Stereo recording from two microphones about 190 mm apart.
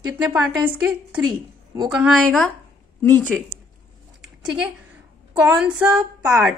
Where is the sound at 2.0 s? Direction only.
Centre (ahead or behind).